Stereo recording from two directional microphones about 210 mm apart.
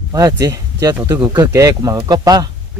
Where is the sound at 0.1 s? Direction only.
15° right (ahead or behind).